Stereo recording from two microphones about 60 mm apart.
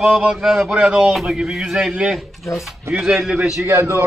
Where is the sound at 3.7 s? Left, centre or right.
Right.